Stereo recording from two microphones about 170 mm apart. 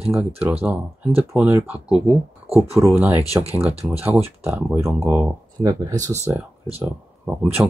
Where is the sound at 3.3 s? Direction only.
15° right (ahead or behind).